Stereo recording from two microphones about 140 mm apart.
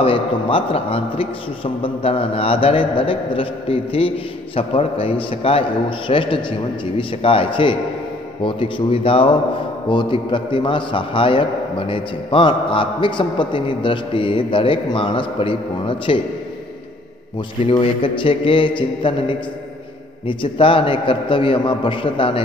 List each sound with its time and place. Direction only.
0.0 s a man's voice: 40° left (ahead or behind)
17.6 s a man's voice: 40° left (ahead or behind)